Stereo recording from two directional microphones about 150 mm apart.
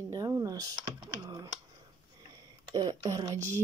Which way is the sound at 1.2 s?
25° right (ahead or behind).